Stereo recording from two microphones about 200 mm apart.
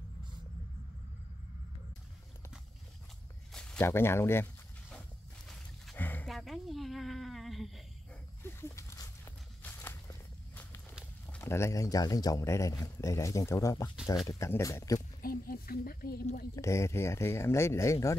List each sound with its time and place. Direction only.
3.5 s speech: 5° left (ahead or behind)
5.5 s a sound: 5° left (ahead or behind)
8.4 s walk: 10° left (ahead or behind)
11.3 s speech: 15° left (ahead or behind)
15.0 s a sound: 45° left (ahead or behind)
16.5 s speech: 15° left (ahead or behind)